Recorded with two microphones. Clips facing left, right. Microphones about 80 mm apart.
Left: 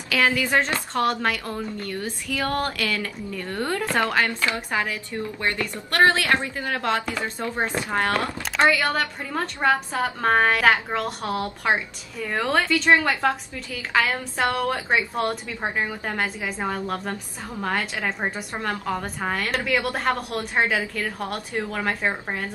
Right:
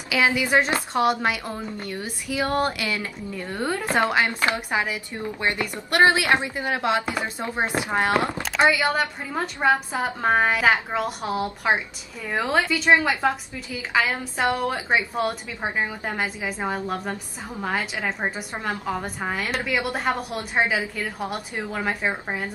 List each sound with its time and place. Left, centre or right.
0.1 s a woman's voice: centre